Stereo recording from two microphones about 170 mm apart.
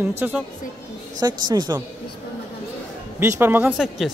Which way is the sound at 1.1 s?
25° right (ahead or behind).